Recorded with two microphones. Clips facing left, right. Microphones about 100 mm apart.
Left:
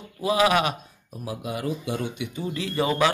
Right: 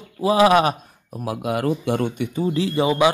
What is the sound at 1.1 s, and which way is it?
Speech, 65° right (ahead or behind).